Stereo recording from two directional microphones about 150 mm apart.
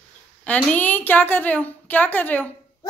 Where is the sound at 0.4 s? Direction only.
5° left (ahead or behind).